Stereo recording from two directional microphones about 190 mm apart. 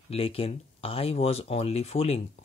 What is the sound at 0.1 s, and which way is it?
Speech, 30° left (ahead or behind).